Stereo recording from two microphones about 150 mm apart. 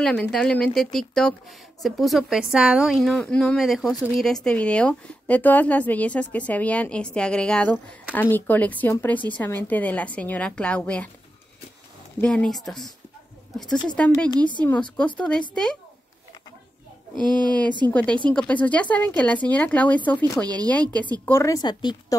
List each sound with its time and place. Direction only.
0.0 s a woman's voice: 5° left (ahead or behind)
12.2 s a woman's voice: 5° left (ahead or behind)
17.1 s a woman's voice: 5° left (ahead or behind); by 21.9 s 25° left (ahead or behind)